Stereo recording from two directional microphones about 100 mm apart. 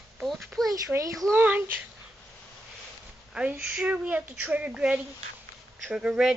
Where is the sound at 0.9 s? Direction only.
35° right (ahead or behind).